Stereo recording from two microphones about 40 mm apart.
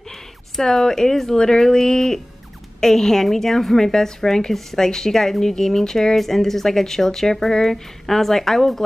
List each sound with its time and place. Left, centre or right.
0.1 s a woman's voice: centre